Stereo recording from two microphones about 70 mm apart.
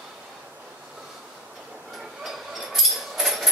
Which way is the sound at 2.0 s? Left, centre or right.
Centre.